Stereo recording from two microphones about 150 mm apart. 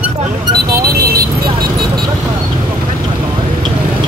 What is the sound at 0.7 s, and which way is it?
Vehicle, 90° right.